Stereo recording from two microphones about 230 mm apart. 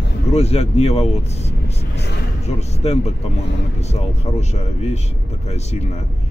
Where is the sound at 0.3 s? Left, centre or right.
Left.